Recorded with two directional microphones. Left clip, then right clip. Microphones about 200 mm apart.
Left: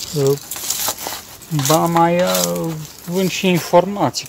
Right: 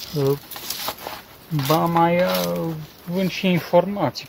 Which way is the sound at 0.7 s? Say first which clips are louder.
Left 6 dB; 10° left (ahead or behind).